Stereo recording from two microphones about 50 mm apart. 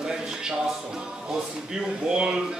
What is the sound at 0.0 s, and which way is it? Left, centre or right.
Speech, centre.